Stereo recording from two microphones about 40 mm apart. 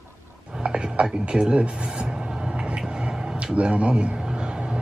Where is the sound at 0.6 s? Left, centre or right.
Right.